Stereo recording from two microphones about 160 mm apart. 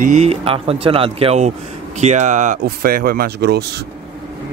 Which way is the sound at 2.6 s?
70° right (ahead or behind).